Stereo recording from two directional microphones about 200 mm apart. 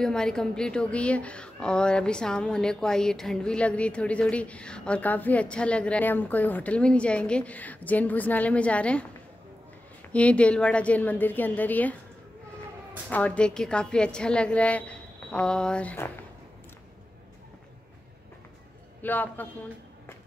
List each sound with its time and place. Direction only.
0.0 s a woman's voice: 5° left (ahead or behind)
10.1 s a woman's voice: 5° left (ahead or behind)
13.1 s a woman's voice: 5° left (ahead or behind)
18.9 s a man's voice: 10° left (ahead or behind)